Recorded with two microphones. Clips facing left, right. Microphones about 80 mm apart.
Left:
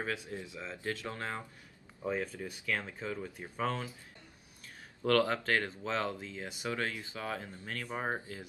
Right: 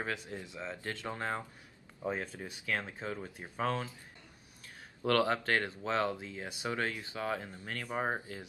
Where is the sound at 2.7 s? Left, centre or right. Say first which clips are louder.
Even; centre.